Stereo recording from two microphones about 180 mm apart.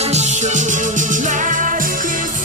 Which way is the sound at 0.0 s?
40° right (ahead or behind).